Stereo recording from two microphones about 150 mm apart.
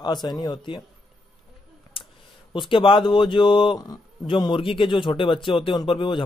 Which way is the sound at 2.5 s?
35° left (ahead or behind).